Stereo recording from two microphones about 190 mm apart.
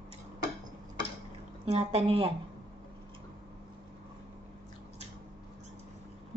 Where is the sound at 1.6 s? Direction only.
30° right (ahead or behind).